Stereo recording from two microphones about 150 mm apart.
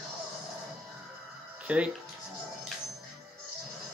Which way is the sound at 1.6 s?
10° right (ahead or behind).